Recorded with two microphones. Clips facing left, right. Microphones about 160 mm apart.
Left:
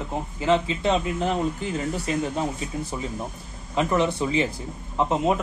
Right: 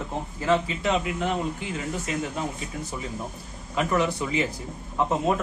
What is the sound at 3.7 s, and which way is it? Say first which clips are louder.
A man's voice: left 2 dB; 25° left (ahead or behind).